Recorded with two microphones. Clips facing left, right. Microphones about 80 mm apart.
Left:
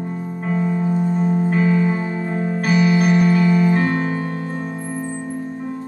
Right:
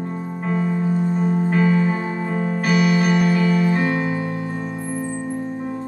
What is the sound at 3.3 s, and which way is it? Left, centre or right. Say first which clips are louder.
Music: left 2 dB; centre.